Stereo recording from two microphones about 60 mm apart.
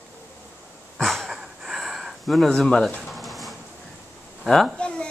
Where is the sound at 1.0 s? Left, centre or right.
Centre.